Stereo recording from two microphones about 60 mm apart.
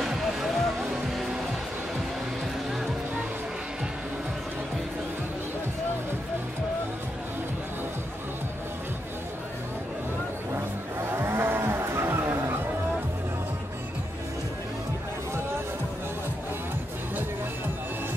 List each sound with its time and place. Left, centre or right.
0.0 s music: centre
11.1 s livestock: right